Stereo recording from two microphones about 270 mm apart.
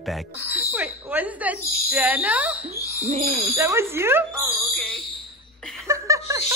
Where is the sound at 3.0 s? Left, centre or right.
Right.